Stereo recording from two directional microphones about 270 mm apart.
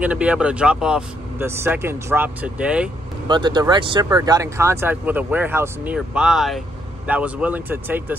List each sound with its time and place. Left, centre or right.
0.0 s speech: centre
3.3 s speech: centre